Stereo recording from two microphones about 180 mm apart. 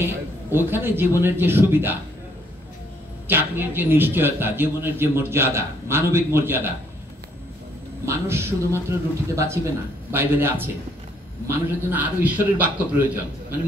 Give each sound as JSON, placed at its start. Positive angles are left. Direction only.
{"t": 0.0, "sound": "a man's voice", "side_deg": -10}
{"t": 3.3, "sound": "a man's voice", "side_deg": -10}
{"t": 8.0, "sound": "a man's voice", "side_deg": -15}